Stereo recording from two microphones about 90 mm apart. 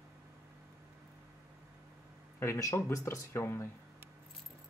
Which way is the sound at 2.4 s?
30° left (ahead or behind).